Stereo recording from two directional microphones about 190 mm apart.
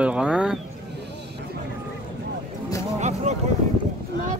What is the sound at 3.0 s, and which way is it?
Vehicle, 40° right (ahead or behind).